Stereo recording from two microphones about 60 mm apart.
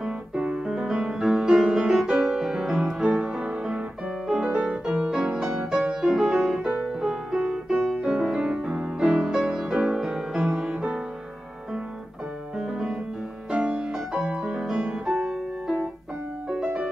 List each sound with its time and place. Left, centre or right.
0.0 s music: centre
3.4 s music: centre
12.5 s music: centre